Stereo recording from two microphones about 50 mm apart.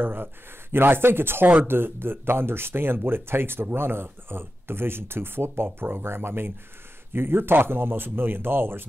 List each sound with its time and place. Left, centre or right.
0.0 s speech: right